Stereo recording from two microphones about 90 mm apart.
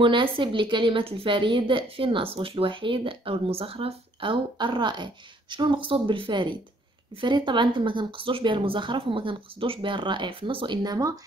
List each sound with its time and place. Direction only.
0.0 s a woman's voice: 65° right (ahead or behind); by 11.1 s 45° right (ahead or behind)